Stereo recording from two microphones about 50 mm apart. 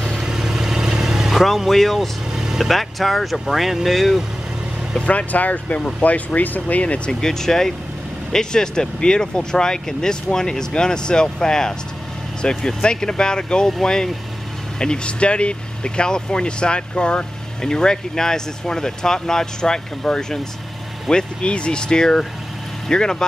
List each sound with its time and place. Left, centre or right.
0.0 s vehicle: centre
2.3 s vehicle: centre
2.7 s speech: centre
5.0 s speech: left
5.8 s speech: centre
6.0 s speech: left
7.1 s speech: centre